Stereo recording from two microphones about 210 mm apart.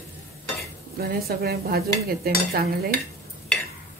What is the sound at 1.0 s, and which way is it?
A woman's voice, 45° right (ahead or behind).